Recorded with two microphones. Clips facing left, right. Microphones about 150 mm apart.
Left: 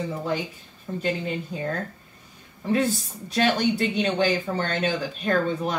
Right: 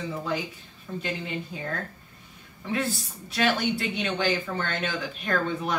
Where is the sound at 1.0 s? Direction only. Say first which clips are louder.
Left 6 dB; 40° left (ahead or behind).